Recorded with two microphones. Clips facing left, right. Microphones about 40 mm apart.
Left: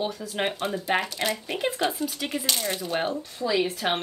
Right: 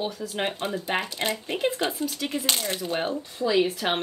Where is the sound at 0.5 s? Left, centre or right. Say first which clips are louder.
Left 2 dB; right.